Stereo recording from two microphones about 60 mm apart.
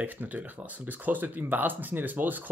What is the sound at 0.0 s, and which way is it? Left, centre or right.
Speech, right.